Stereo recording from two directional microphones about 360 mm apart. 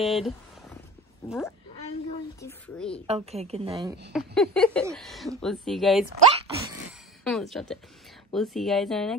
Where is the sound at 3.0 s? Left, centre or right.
Centre.